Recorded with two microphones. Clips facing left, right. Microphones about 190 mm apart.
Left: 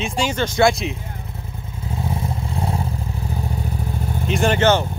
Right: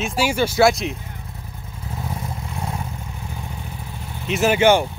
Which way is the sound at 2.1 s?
30° left (ahead or behind).